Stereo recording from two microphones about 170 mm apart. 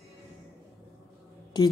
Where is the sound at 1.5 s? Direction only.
25° left (ahead or behind).